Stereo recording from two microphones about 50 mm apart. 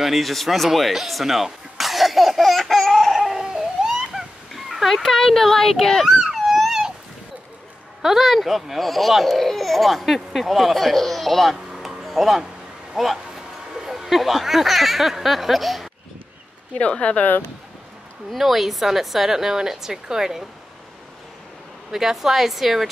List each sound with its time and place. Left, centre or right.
0.0 s speech: centre
2.8 s a sound: centre
5.0 s speech: centre
6.0 s a sound: centre
8.0 s speech: centre
11.7 s a sound: centre
12.9 s speech: centre
16.7 s speech: left
18.3 s a woman's voice: centre
21.9 s speech: centre